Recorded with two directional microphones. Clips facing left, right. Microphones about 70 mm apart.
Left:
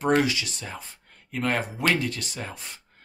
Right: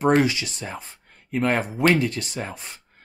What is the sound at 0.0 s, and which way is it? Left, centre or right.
Speech, right.